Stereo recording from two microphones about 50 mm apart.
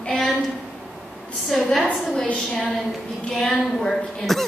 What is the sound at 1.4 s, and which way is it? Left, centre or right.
Speech, centre.